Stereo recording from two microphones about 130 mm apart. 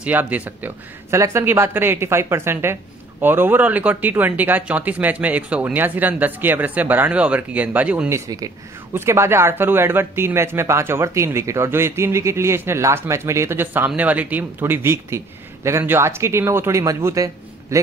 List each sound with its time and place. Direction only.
0.0 s speech: 10° right (ahead or behind)
8.1 s speech: 25° right (ahead or behind)